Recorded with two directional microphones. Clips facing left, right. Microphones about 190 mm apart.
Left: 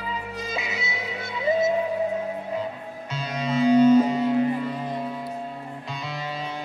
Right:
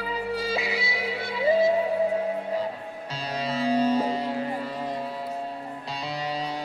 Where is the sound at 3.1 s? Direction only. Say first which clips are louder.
Left 3 dB; 35° right (ahead or behind).